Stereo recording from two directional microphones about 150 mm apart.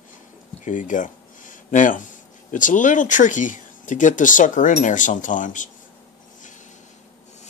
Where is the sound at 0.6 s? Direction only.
60° left (ahead or behind).